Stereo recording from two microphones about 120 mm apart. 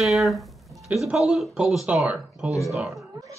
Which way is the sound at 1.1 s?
Centre (ahead or behind).